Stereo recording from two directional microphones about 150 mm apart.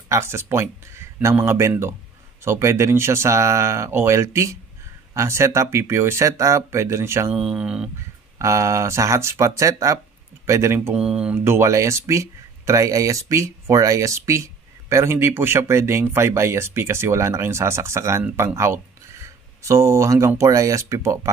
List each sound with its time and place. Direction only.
0.1 s speech: 15° right (ahead or behind)
7.3 s speech: 5° right (ahead or behind)
8.4 s speech: 20° right (ahead or behind)
11.0 s speech: 5° right (ahead or behind)
11.4 s speech: 20° right (ahead or behind)